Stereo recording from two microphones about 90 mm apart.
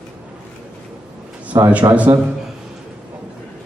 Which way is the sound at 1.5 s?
35° right (ahead or behind).